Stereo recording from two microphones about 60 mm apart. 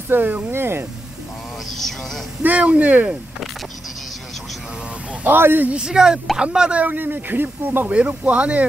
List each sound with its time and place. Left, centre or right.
0.1 s speech: right
2.4 s speech: right
5.2 s speech: right
5.7 s speech: centre
6.8 s speech: right
7.9 s speech: right